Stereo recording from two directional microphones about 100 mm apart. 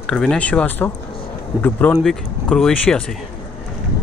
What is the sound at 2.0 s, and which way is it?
Speech, 5° left (ahead or behind).